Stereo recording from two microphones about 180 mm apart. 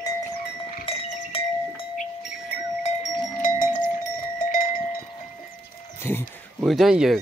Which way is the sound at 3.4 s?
45° left (ahead or behind).